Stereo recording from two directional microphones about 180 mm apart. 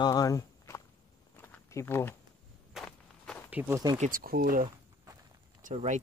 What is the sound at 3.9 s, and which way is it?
Speech, 45° right (ahead or behind).